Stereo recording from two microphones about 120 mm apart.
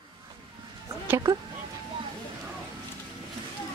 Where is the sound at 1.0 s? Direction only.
30° right (ahead or behind).